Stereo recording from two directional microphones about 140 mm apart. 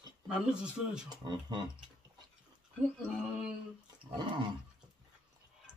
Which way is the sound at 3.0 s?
5° right (ahead or behind).